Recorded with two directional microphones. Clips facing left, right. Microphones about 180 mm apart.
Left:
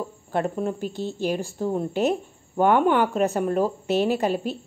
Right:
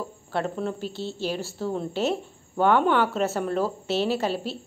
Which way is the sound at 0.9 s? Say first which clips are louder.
Left 3 dB; 15° left (ahead or behind).